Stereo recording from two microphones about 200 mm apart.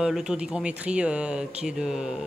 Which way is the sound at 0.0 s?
5° right (ahead or behind).